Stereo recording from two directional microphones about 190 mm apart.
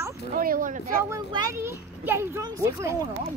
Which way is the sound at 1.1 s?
15° right (ahead or behind).